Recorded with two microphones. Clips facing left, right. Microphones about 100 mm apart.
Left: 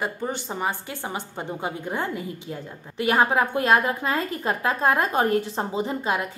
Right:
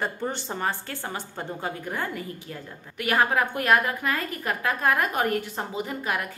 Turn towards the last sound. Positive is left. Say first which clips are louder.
# left 4 dB
turn(degrees=25)  # may be behind; listen again after turning